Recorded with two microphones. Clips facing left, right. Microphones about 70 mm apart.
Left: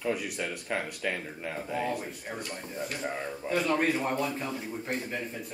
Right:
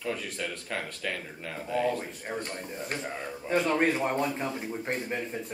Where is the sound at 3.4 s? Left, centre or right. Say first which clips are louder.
Right 2 dB; right.